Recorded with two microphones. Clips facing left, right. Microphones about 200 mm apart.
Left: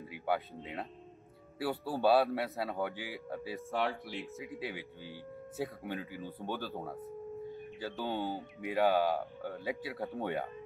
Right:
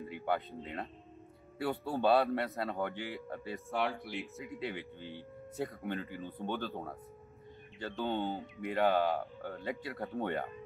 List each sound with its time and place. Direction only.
0.1 s speech: 5° left (ahead or behind)